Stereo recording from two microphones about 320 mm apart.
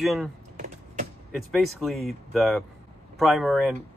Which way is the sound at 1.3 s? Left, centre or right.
Centre.